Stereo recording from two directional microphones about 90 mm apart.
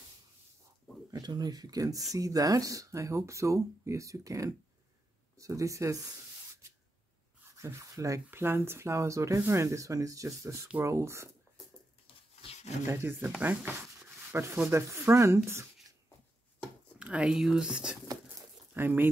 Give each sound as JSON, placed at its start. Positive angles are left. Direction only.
{"t": 1.1, "sound": "speech", "side_deg": -50}
{"t": 8.3, "sound": "speech", "side_deg": -25}
{"t": 12.8, "sound": "speech", "side_deg": -25}
{"t": 13.4, "sound": "a sound", "side_deg": -20}
{"t": 14.4, "sound": "speech", "side_deg": -30}
{"t": 17.0, "sound": "speech", "side_deg": -10}
{"t": 18.8, "sound": "speech", "side_deg": -20}